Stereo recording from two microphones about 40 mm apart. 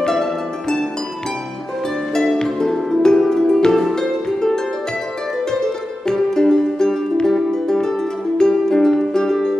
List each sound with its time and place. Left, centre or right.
0.0 s harp: centre
2.3 s music: centre
5.5 s music: centre